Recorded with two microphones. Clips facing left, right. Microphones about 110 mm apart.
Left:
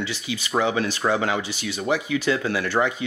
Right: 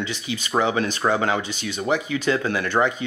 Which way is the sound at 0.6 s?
40° right (ahead or behind).